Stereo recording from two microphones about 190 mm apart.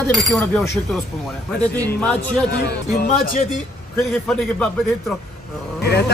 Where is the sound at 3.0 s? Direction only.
50° left (ahead or behind).